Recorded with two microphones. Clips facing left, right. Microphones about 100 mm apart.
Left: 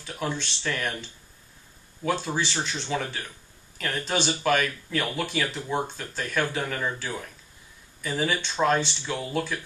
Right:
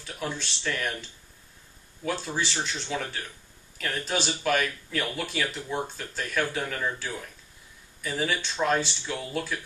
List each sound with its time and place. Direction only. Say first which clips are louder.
0.0 s speech: left 3 dB; centre (ahead or behind)
2.0 s speech: left 3 dB; centre (ahead or behind)
5.6 s speech: left 3 dB; 25° left (ahead or behind)
5.9 s speech: left 1 dB; centre (ahead or behind)
9.0 s speech: left 2 dB; 10° left (ahead or behind)